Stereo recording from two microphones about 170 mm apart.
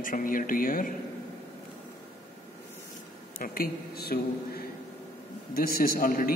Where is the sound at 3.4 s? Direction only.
60° left (ahead or behind).